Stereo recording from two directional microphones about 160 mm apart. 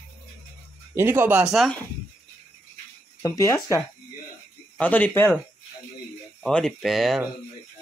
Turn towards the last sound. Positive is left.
turn(degrees=0)  # may be behind; listen again after turning